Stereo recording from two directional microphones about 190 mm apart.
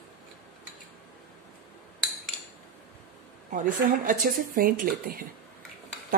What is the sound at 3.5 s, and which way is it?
A woman's voice, 45° right (ahead or behind).